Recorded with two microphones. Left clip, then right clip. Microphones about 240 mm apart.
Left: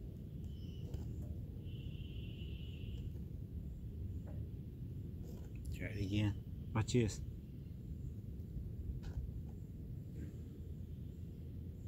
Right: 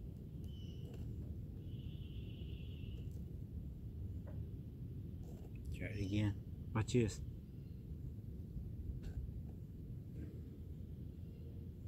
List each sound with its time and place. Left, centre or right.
5.8 s speech: centre